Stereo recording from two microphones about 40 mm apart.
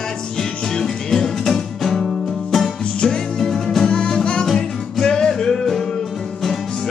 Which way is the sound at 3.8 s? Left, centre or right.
Centre.